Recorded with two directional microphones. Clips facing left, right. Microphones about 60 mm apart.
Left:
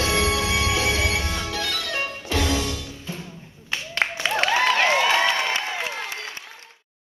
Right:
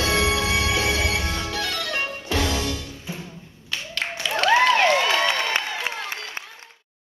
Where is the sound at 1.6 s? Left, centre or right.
Right.